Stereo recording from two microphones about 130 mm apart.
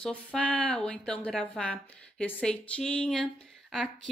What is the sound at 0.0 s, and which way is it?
A woman's voice, 10° left (ahead or behind).